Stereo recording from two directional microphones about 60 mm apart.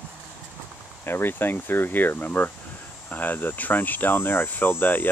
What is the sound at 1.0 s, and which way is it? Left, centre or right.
Speech, left.